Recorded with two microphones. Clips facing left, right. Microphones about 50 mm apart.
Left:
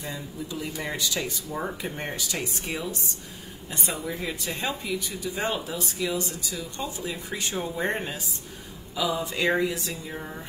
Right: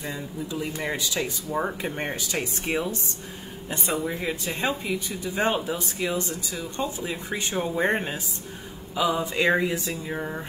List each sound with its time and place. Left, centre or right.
0.8 s speech: centre
10.1 s speech: centre